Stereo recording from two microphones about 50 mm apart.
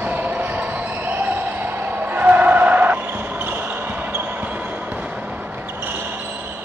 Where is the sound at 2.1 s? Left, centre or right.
Right.